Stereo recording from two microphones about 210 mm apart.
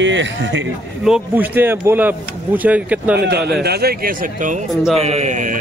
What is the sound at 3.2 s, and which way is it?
A man's voice, 50° right (ahead or behind).